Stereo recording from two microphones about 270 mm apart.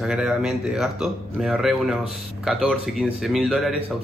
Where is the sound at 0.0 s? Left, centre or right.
Centre.